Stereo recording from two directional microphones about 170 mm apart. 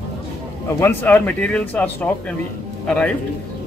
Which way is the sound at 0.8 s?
10° left (ahead or behind).